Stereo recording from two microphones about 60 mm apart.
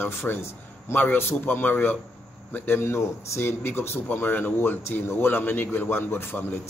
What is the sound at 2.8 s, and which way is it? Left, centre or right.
Speech, left.